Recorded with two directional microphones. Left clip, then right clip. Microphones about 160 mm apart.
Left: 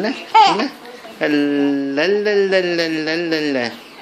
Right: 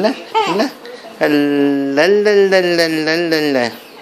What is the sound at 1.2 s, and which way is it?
Speech, 15° right (ahead or behind).